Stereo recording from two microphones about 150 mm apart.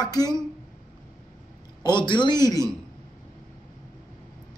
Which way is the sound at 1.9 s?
30° left (ahead or behind).